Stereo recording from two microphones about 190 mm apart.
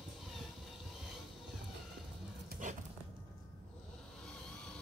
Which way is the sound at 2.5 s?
40° right (ahead or behind).